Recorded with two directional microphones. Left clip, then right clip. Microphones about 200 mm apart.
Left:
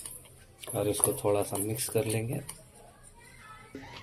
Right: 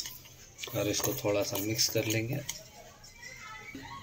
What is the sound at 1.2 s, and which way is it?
Speech, 25° left (ahead or behind).